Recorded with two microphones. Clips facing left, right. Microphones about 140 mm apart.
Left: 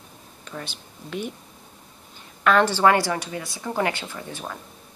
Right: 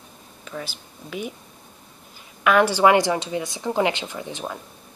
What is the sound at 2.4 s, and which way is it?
A woman's voice, 10° right (ahead or behind).